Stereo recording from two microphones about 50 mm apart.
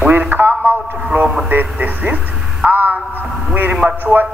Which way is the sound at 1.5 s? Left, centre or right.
Right.